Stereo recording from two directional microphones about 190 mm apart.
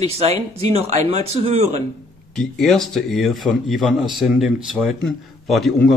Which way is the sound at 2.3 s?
Centre (ahead or behind).